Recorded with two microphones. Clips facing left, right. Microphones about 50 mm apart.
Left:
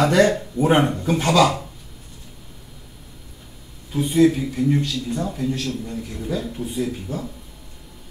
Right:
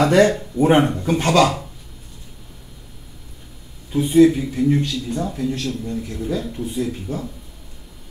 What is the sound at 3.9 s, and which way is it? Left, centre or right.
Speech, centre.